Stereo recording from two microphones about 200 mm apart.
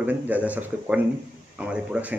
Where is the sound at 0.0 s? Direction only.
10° right (ahead or behind).